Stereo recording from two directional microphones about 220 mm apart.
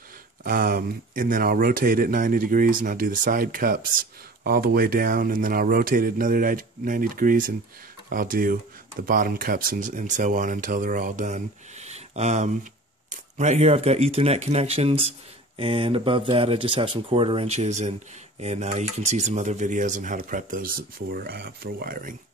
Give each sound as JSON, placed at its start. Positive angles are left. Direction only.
{"t": 0.4, "sound": "speech", "side_deg": -40}